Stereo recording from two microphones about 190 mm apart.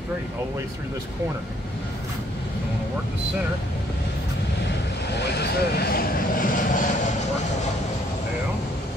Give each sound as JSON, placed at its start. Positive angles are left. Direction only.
{"t": 4.6, "sound": "vehicle", "side_deg": 65}